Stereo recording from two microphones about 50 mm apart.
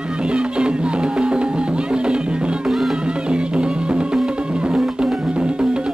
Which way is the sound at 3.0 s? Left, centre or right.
Centre.